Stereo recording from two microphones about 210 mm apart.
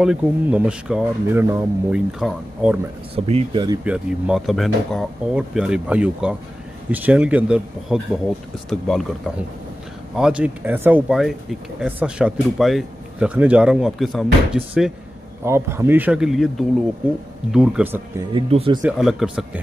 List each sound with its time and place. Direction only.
0.0 s speech: 5° right (ahead or behind)
3.3 s speech: 25° right (ahead or behind)
3.8 s speech: 5° right (ahead or behind)
18.3 s speech: 25° right (ahead or behind)
18.8 s speech: 5° right (ahead or behind)